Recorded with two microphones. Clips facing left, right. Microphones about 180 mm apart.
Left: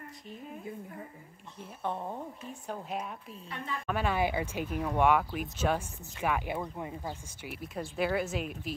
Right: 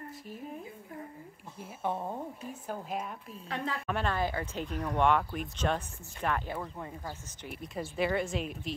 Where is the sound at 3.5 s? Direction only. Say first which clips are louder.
Right 4 dB; 90° right.